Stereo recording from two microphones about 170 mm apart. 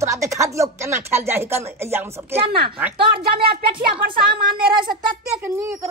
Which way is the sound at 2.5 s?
65° right (ahead or behind).